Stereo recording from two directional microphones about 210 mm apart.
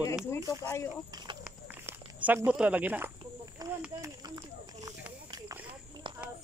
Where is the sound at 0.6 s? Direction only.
10° left (ahead or behind).